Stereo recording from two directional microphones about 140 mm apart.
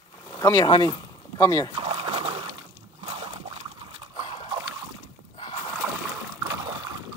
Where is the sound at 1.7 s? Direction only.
45° right (ahead or behind).